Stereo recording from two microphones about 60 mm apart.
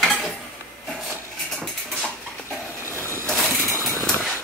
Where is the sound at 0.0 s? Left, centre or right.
Centre.